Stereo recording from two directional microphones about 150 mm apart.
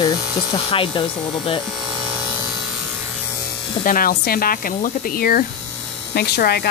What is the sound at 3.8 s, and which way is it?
Speech, 70° left (ahead or behind).